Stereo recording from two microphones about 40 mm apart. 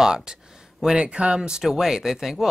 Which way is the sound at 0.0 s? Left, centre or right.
Centre.